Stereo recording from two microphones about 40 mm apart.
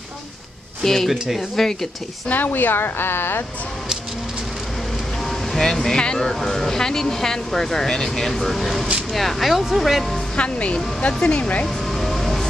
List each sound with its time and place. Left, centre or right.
0.8 s speech: centre
2.2 s speech: left
5.5 s speech: centre
10.3 s speech: left
11.6 s music: centre